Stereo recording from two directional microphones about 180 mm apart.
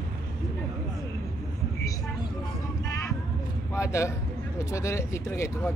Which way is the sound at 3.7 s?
15° left (ahead or behind).